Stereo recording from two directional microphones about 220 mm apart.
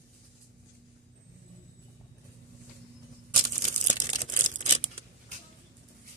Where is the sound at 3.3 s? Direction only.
35° right (ahead or behind).